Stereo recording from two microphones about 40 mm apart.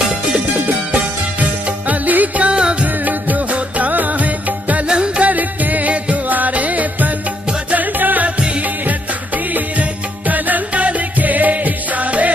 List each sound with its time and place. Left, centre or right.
0.9 s music: right
3.1 s music: right
4.8 s music: right
5.2 s music: right
8.4 s music: right
8.6 s music: right